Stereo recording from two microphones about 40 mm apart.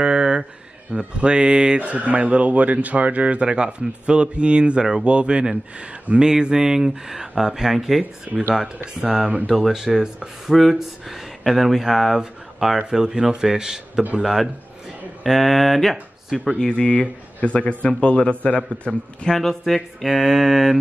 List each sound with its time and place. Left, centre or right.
0.0 s a sound: right
0.9 s speech: right
1.8 s a man's voice: right; by 8.0 s centre
8.7 s speech: right
10.5 s speech: centre
12.6 s speech: centre
14.2 s speech: centre
16.5 s a man's voice: left
18.9 s speech: centre
19.4 s speech: centre